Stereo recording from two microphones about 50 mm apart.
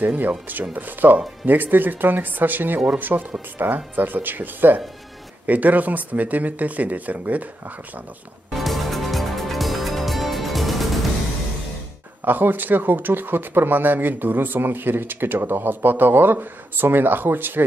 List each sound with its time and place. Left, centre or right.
0.5 s speech: right
8.5 s music: centre
12.3 s speech: right